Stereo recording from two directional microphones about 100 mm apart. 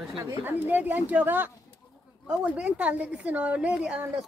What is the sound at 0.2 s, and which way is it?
A woman's voice, 20° right (ahead or behind).